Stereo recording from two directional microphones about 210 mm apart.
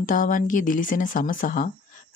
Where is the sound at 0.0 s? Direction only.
40° left (ahead or behind).